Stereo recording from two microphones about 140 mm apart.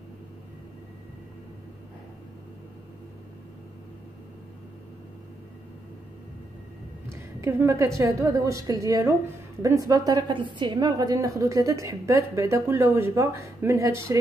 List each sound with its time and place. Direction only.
7.1 s a woman's voice: 20° right (ahead or behind)